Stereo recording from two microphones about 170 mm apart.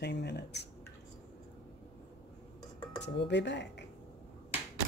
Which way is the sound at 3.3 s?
90° left.